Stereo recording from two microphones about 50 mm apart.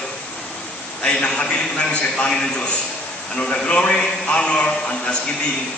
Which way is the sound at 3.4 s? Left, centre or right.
Left.